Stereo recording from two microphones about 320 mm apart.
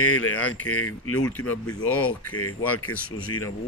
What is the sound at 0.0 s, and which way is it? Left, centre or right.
Speech, left.